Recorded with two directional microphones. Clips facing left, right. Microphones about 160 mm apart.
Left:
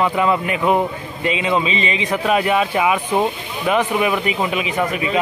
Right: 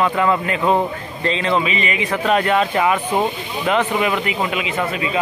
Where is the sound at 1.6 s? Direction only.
25° left (ahead or behind).